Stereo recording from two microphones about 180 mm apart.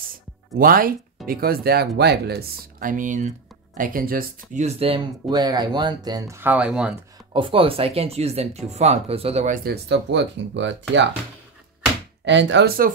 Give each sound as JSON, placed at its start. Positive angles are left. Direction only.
{"t": 0.6, "sound": "speech", "side_deg": -50}
{"t": 4.6, "sound": "speech", "side_deg": -30}
{"t": 7.3, "sound": "speech", "side_deg": -30}
{"t": 9.7, "sound": "speech", "side_deg": -75}
{"t": 12.3, "sound": "speech", "side_deg": -80}